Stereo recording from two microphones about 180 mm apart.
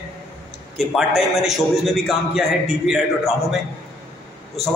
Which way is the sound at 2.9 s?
Centre (ahead or behind).